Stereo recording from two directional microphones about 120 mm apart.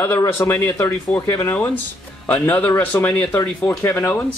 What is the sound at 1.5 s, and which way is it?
Speech, 15° left (ahead or behind).